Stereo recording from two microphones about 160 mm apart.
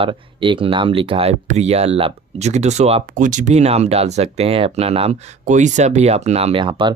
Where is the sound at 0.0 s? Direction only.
30° right (ahead or behind).